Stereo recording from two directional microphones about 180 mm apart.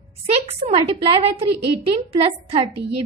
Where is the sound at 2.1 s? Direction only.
30° right (ahead or behind).